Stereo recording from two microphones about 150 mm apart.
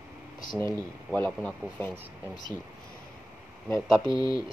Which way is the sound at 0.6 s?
15° left (ahead or behind).